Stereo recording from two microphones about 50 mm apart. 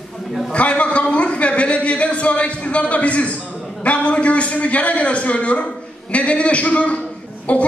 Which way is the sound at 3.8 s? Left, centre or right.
Left.